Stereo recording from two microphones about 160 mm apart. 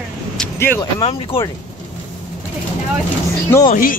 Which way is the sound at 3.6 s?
60° left (ahead or behind).